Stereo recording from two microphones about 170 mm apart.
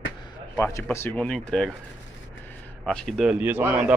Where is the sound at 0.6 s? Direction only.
15° left (ahead or behind).